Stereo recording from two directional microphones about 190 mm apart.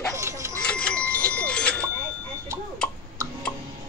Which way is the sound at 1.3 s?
5° left (ahead or behind).